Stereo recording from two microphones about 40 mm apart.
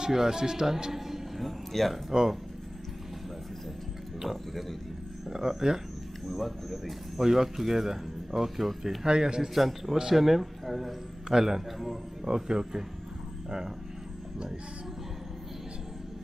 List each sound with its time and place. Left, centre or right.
0.0 s speech: centre
0.9 s a sound: centre
1.7 s speech: centre
4.2 s speech: centre
6.2 s speech: centre
9.0 s a man's voice: centre
9.5 s speech: centre
12.3 s speech: centre